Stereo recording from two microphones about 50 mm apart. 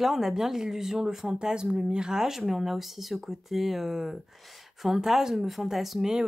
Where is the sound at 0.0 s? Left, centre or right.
Centre.